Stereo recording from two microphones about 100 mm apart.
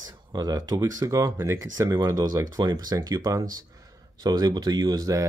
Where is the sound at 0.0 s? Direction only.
40° right (ahead or behind).